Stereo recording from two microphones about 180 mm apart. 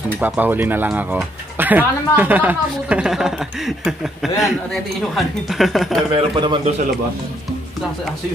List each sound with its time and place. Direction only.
0.2 s speech: 10° right (ahead or behind)
6.1 s a man's voice: 25° right (ahead or behind)